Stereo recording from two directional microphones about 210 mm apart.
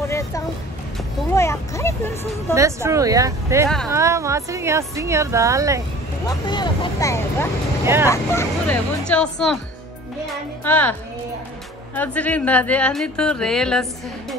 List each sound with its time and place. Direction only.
1.3 s a sound: 15° left (ahead or behind)
2.5 s speech: 15° right (ahead or behind)
3.6 s speech: centre (ahead or behind)
3.9 s speech: 15° right (ahead or behind)
6.2 s speech: 20° left (ahead or behind)
7.8 s speech: 10° right (ahead or behind)
8.1 s speech: 10° left (ahead or behind)
10.6 s speech: 10° left (ahead or behind)